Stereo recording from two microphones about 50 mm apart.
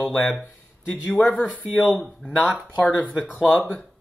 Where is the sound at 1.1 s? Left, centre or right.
Left.